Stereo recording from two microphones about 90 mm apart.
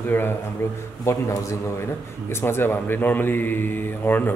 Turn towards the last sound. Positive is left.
turn(degrees=20)  # may be behind; listen again after turning